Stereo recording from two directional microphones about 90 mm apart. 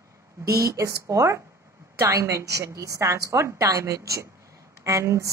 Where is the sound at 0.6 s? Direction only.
35° right (ahead or behind).